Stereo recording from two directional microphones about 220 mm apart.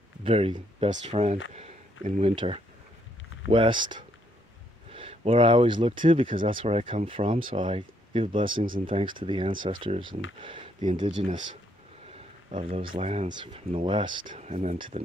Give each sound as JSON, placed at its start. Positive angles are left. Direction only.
{"t": 0.2, "sound": "speech", "side_deg": -25}
{"t": 11.2, "sound": "speech", "side_deg": -35}
{"t": 14.2, "sound": "speech", "side_deg": -35}